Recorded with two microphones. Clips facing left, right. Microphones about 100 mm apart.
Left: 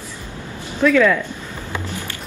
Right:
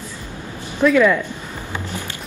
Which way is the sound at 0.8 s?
10° right (ahead or behind).